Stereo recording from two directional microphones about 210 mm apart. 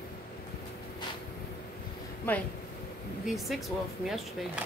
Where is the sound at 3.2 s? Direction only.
Centre (ahead or behind).